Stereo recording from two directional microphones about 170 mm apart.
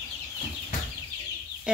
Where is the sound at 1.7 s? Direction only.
5° right (ahead or behind).